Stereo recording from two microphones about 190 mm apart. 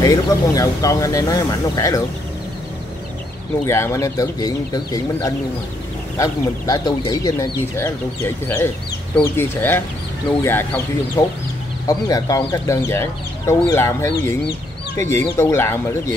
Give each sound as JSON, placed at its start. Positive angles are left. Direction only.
{"t": 0.0, "sound": "speech", "side_deg": 15}
{"t": 3.6, "sound": "speech", "side_deg": 15}
{"t": 9.1, "sound": "speech", "side_deg": 10}